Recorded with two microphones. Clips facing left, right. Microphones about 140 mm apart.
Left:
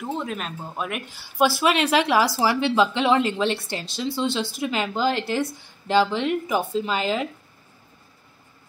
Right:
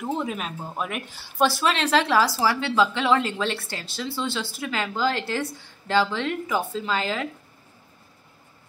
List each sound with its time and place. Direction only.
0.0 s speech: 5° right (ahead or behind); by 7.2 s 20° left (ahead or behind)